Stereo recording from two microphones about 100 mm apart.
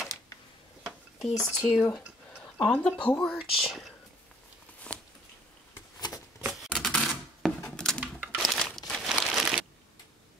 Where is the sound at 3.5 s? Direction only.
Centre (ahead or behind).